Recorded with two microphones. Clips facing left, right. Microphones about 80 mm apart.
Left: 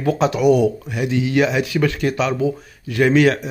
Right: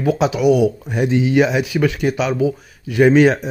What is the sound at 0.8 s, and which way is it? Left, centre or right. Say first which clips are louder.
Speech: right 4 dB; right.